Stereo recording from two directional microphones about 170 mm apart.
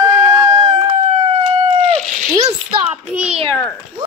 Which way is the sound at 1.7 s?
40° right (ahead or behind).